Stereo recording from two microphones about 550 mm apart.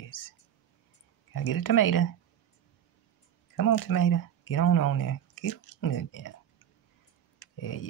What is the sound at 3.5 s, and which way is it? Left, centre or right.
Speech, left.